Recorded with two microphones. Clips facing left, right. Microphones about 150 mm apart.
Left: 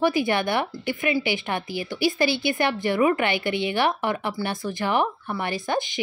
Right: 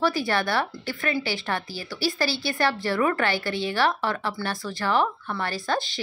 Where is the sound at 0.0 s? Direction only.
20° left (ahead or behind).